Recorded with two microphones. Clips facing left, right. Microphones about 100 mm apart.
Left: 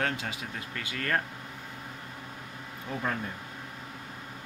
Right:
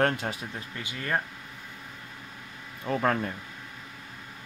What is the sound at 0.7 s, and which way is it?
Speech, 20° right (ahead or behind).